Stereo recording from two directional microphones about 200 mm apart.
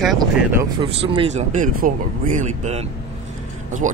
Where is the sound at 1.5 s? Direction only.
40° right (ahead or behind).